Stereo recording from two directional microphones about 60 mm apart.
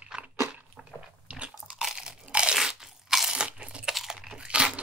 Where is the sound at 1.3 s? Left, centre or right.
Centre.